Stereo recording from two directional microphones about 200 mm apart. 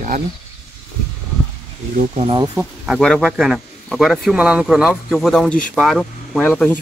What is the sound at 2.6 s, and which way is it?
Speech, centre (ahead or behind).